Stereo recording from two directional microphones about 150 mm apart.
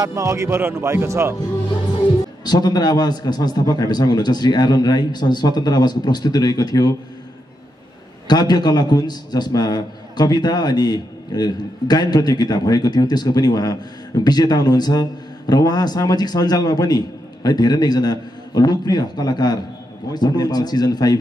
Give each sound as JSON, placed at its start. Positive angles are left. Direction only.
{"t": 0.0, "sound": "speech", "side_deg": -20}
{"t": 2.4, "sound": "a man's voice", "side_deg": 25}
{"t": 8.3, "sound": "a man's voice", "side_deg": 25}